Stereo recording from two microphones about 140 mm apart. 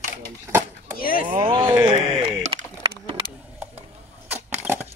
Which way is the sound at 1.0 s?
90° left.